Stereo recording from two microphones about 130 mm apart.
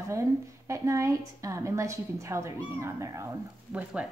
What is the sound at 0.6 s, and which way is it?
A woman's voice, 25° right (ahead or behind).